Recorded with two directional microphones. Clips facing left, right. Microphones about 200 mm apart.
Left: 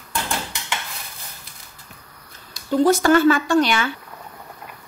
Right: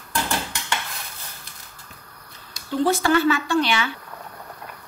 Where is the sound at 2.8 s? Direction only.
45° left (ahead or behind).